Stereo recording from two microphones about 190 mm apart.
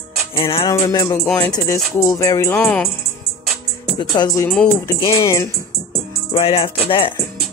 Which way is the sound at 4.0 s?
20° left (ahead or behind).